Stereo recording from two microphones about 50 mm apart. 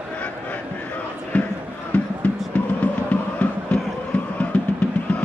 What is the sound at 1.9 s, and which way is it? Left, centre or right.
Music, left.